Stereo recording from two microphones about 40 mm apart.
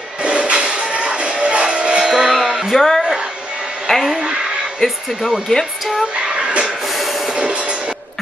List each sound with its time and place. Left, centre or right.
0.2 s music: right
2.7 s music: centre
4.7 s speech: centre
6.2 s a sound: right